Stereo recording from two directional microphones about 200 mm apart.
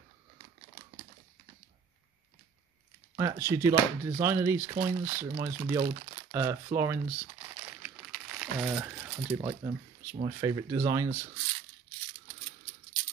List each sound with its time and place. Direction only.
3.2 s speech: 10° right (ahead or behind)
7.2 s crumpling: 15° right (ahead or behind)
10.1 s speech: 20° right (ahead or behind)